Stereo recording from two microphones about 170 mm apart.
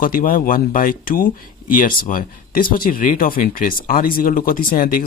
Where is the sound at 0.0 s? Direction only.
55° left (ahead or behind).